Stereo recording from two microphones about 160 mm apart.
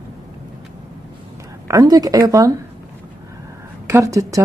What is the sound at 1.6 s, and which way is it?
Speech, 20° right (ahead or behind).